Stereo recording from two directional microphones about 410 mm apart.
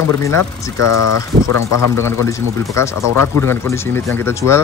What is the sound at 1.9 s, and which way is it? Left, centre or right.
Speech, centre.